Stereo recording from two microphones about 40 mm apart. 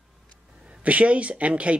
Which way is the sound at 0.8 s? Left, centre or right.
Right.